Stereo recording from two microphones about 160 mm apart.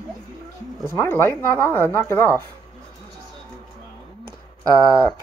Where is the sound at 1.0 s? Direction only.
15° left (ahead or behind).